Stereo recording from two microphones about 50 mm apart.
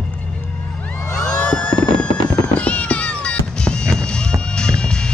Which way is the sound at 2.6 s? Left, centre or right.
Left.